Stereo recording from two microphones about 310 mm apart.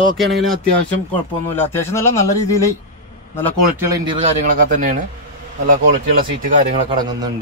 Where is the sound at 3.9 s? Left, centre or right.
Centre.